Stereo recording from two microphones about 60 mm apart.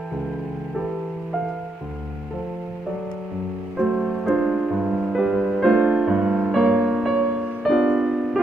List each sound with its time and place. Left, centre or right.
3.7 s music: centre
4.2 s music: centre
6.5 s music: centre
7.8 s music: centre